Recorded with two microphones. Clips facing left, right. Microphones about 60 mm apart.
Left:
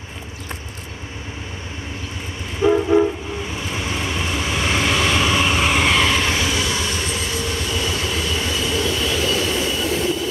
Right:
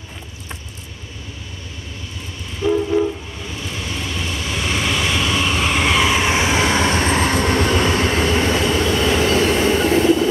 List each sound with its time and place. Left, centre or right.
2.6 s train: left
3.7 s vehicle: left; by 6.3 s centre
6.3 s train: right
6.6 s train: right